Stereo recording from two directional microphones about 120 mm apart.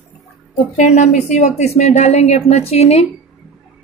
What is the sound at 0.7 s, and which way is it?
A woman's voice, 75° left (ahead or behind).